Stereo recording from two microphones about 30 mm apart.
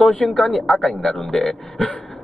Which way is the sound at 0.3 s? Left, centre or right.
Centre.